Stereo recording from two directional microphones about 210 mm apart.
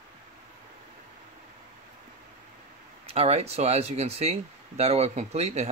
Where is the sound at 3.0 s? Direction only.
30° right (ahead or behind).